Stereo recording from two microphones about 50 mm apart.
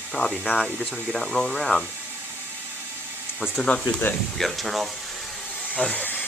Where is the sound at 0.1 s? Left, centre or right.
Left.